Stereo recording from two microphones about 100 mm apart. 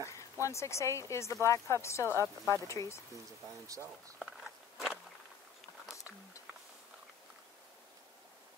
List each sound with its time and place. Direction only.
0.0 s speech: 30° left (ahead or behind)